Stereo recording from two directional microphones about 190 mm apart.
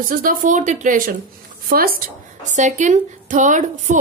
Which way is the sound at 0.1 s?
50° right (ahead or behind).